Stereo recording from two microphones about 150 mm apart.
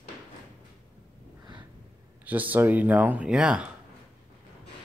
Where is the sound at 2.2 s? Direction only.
10° right (ahead or behind).